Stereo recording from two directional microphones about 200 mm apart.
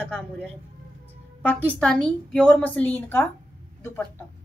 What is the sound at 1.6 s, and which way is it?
A woman's voice, 5° left (ahead or behind).